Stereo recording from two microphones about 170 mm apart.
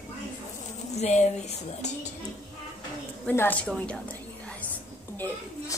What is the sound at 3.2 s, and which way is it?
Speech, 10° left (ahead or behind).